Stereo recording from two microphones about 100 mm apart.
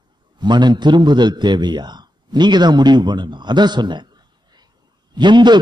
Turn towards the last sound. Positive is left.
turn(degrees=-50)  # may be behind; listen again after turning